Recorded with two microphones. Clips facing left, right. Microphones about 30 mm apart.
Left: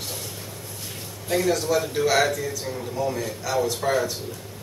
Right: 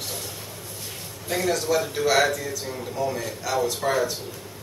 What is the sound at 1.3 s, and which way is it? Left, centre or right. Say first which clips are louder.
Speech: left 1 dB; centre.